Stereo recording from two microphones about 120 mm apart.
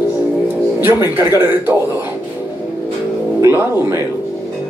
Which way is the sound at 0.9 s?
35° left (ahead or behind).